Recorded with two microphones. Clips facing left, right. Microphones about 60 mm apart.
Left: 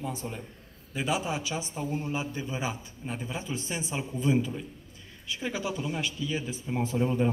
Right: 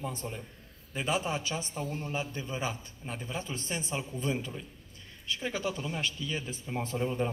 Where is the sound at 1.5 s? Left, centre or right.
Left.